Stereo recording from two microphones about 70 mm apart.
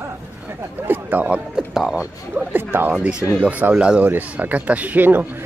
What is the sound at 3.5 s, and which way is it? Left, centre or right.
Speech, right.